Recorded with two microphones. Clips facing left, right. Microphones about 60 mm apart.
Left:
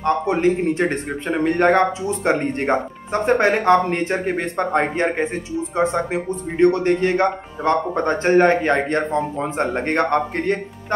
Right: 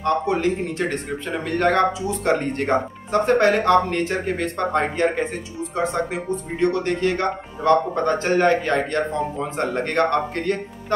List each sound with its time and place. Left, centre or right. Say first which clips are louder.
0.0 s speech: left 2 dB; left